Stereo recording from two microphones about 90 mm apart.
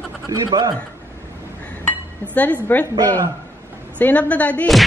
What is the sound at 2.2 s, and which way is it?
Speech, 15° left (ahead or behind).